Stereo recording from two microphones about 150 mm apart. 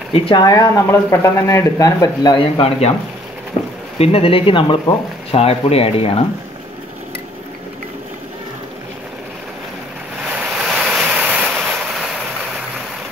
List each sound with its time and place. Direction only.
0.1 s speech: 35° left (ahead or behind)
4.0 s speech: 40° left (ahead or behind)
10.2 s waves: 5° right (ahead or behind)